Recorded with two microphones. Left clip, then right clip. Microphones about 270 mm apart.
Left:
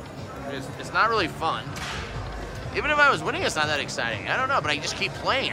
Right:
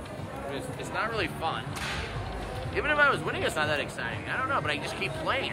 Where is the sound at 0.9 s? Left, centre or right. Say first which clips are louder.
Left 9 dB; centre.